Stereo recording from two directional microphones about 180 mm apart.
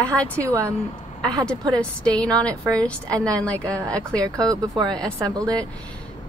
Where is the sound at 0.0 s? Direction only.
5° left (ahead or behind).